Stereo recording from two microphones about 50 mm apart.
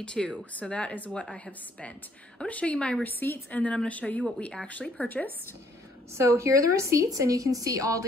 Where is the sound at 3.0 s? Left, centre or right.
Left.